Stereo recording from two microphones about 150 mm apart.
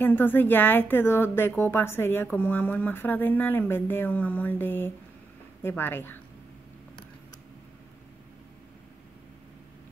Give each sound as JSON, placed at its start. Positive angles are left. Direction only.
{"t": 0.0, "sound": "speech", "side_deg": 15}